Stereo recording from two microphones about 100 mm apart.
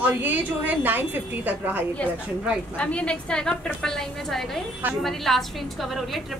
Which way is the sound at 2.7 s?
10° left (ahead or behind).